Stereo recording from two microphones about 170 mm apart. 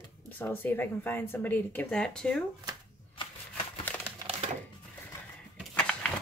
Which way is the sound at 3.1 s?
30° left (ahead or behind).